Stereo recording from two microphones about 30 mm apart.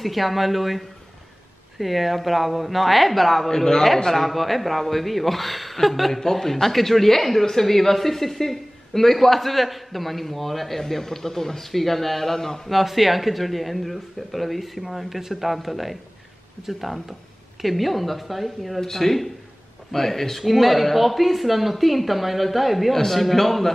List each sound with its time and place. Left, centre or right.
0.0 s speech: centre
3.4 s speech: centre
4.1 s speech: centre
12.6 s speech: centre